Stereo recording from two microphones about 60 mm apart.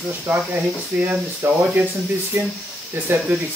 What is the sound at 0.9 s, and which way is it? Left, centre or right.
Speech, right.